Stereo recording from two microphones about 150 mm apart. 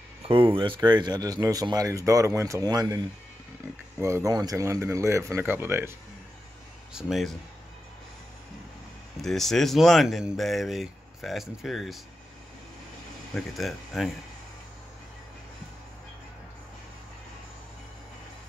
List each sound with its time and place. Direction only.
0.3 s speech: 35° right (ahead or behind); by 5.9 s 15° right (ahead or behind)
6.9 s speech: centre (ahead or behind)
9.2 s speech: centre (ahead or behind)
13.3 s speech: centre (ahead or behind)